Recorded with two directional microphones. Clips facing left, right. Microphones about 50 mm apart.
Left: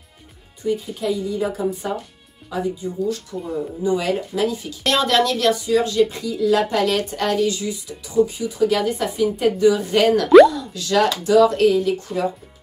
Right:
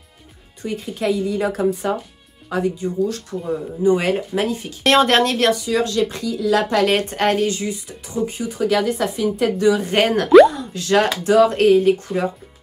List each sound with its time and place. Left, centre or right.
0.6 s speech: right
3.8 s speech: right
5.7 s speech: right
6.9 s speech: right